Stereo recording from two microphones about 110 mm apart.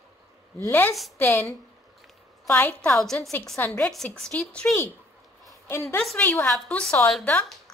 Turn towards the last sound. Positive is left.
turn(degrees=15)  # may be behind; listen again after turning